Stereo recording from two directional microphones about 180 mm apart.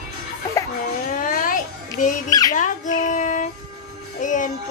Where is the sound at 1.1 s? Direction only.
50° left (ahead or behind).